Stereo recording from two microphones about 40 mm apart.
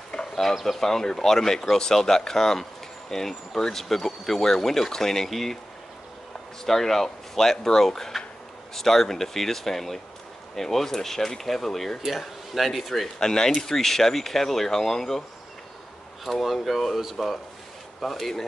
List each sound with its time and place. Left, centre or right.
0.1 s a sound: centre
0.7 s speech: centre
6.6 s speech: centre
13.2 s speech: centre
16.3 s speech: centre